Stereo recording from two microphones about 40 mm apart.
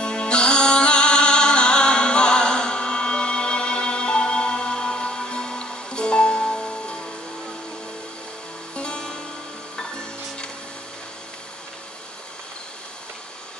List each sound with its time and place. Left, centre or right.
0.0 s music: left
8.7 s music: left